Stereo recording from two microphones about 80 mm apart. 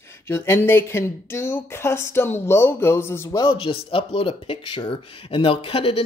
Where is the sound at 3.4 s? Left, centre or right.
Left.